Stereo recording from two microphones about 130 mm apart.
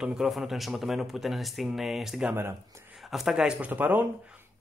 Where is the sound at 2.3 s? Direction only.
15° right (ahead or behind).